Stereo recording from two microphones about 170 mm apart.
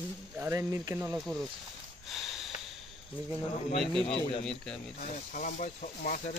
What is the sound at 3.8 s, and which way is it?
Speech, centre (ahead or behind).